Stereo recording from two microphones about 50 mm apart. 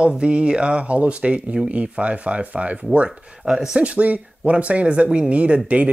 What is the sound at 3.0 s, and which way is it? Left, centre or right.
Speech, centre.